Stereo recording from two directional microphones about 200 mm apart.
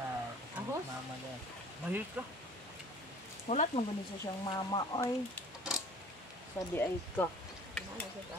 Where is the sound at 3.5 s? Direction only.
35° left (ahead or behind).